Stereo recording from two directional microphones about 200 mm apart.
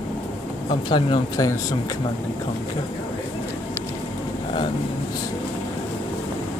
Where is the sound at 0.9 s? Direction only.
20° left (ahead or behind).